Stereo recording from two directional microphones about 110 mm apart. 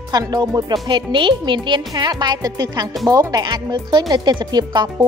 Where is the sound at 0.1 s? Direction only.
35° right (ahead or behind).